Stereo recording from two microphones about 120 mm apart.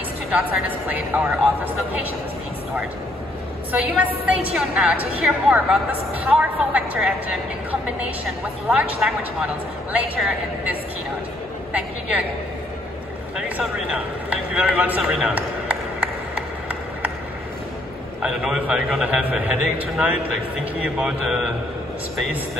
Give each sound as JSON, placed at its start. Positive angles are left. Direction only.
{"t": 0.3, "sound": "a woman's voice", "side_deg": -15}
{"t": 3.9, "sound": "a woman's voice", "side_deg": -10}
{"t": 8.6, "sound": "a woman's voice", "side_deg": -10}
{"t": 11.7, "sound": "a woman's voice", "side_deg": -10}
{"t": 13.4, "sound": "a sound", "side_deg": -10}
{"t": 18.2, "sound": "a woman's voice", "side_deg": -5}